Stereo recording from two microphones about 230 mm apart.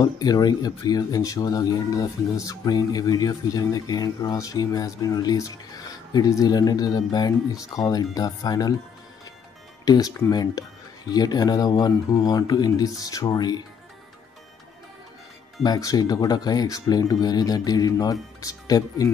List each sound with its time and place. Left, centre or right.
0.0 s speech: centre
9.8 s speech: centre
15.6 s speech: centre